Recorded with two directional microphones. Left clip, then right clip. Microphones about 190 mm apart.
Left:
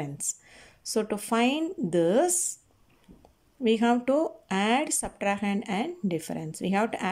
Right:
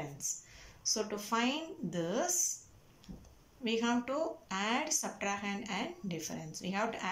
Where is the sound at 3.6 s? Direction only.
45° left (ahead or behind).